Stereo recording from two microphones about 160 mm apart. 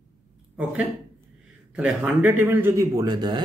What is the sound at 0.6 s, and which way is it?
A man's voice, 5° right (ahead or behind).